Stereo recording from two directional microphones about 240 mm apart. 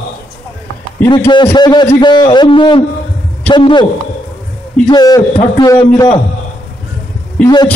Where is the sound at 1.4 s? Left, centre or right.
Centre.